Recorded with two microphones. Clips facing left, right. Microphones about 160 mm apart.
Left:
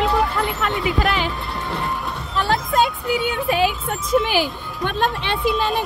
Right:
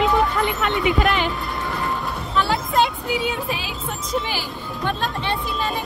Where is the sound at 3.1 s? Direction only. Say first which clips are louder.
Left 3 dB; 65° left (ahead or behind).